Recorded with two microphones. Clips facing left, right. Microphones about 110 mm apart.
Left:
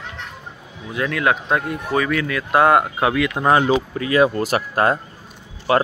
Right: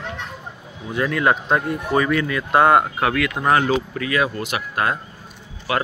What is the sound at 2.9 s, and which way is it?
Speech, 15° left (ahead or behind).